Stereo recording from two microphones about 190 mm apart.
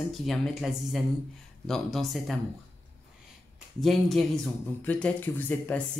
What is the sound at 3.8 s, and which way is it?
Speech, centre (ahead or behind).